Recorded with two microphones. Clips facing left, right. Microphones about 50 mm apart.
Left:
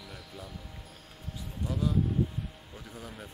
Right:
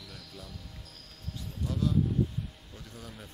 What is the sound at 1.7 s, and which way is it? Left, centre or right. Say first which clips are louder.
A man's voice: right 1 dB; centre.